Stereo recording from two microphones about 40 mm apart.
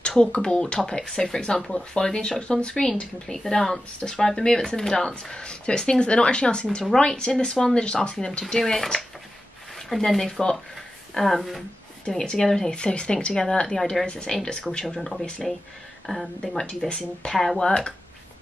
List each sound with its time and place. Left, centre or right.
0.2 s speech: left
3.3 s speech: centre
12.3 s speech: centre
12.7 s speech: left
14.0 s speech: left
15.0 s speech: centre
16.1 s speech: left
17.3 s speech: centre
17.6 s speech: centre